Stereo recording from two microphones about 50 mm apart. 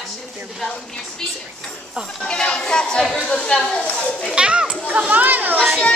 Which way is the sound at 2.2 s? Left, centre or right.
Centre.